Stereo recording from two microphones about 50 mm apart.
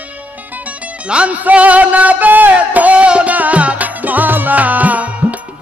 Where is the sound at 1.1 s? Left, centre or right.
Right.